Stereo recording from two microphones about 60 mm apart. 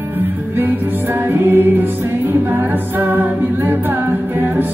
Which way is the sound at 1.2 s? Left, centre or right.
Right.